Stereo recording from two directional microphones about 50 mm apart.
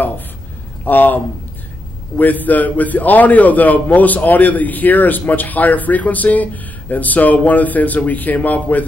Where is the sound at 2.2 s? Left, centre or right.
Left.